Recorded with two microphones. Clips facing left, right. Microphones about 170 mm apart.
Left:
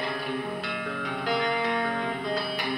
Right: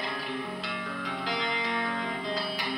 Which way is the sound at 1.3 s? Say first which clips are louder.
Left 7 dB; 55° left (ahead or behind).